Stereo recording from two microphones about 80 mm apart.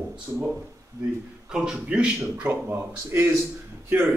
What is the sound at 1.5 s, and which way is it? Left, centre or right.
Speech, centre.